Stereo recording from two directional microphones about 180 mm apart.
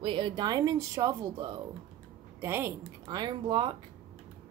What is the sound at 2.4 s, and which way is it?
Speech, 15° right (ahead or behind).